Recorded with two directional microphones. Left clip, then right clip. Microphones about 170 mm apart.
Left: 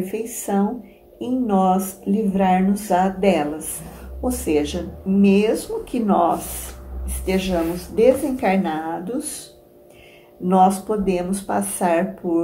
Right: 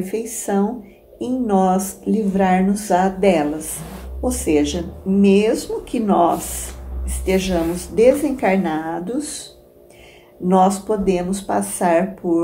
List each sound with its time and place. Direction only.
0.0 s a woman's voice: 10° right (ahead or behind)
10.5 s a woman's voice: 5° right (ahead or behind)